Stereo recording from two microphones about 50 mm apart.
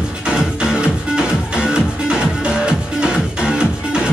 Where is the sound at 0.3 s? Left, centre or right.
Centre.